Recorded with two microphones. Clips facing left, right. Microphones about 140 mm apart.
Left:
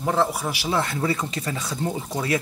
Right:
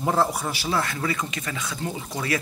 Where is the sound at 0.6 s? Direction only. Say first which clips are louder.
Left 3 dB; 20° left (ahead or behind).